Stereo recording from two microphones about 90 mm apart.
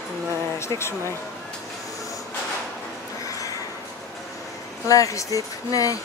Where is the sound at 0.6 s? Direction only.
30° left (ahead or behind).